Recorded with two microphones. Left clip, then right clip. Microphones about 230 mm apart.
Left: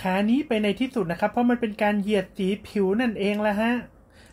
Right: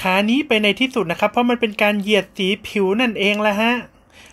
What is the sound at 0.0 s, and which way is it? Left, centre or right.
Speech, centre.